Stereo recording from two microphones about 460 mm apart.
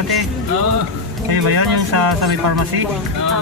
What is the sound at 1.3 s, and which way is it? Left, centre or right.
Speech, right.